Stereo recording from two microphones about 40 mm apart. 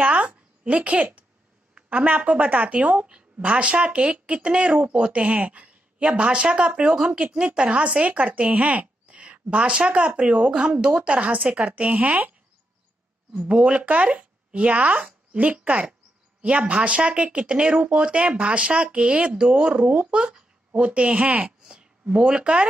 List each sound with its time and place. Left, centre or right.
0.0 s a sound: right
1.9 s a woman's voice: right
13.5 s a woman's voice: right
21.6 s speech: centre